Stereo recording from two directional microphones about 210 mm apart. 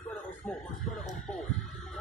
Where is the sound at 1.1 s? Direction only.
Centre (ahead or behind).